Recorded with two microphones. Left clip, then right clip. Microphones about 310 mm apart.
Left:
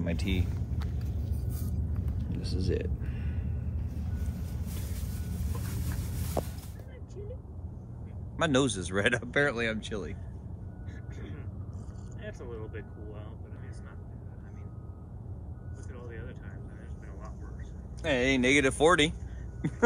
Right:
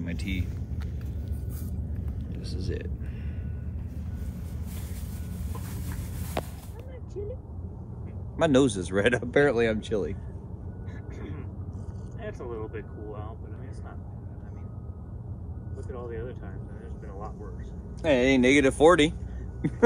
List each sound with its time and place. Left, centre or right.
0.0 s speech: centre
2.2 s a sound: centre
5.3 s vehicle: right
8.4 s speech: centre
12.2 s vehicle: centre
15.9 s speech: centre
18.0 s speech: centre